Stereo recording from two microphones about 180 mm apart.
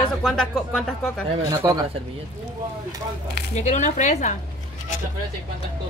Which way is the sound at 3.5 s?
40° left (ahead or behind).